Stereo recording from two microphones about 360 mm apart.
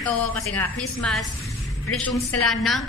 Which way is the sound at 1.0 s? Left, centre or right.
Centre.